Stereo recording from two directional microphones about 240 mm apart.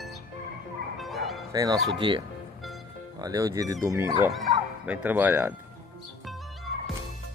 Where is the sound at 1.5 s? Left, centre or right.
Centre.